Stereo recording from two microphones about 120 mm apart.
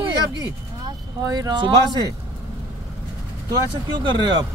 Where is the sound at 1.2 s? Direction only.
30° right (ahead or behind).